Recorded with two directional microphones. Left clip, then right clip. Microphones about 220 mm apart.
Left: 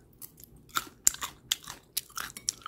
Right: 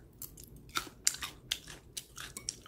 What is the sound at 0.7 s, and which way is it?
Chewing, 15° left (ahead or behind).